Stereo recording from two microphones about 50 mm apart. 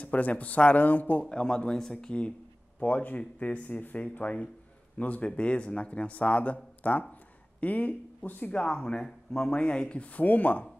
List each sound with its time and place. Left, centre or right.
0.0 s speech: left
1.3 s speech: centre
2.8 s a man's voice: left; by 9.5 s centre
9.5 s a man's voice: left